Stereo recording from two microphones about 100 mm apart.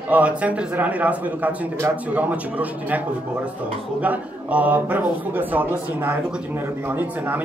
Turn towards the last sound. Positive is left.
turn(degrees=-20)  # may be behind; listen again after turning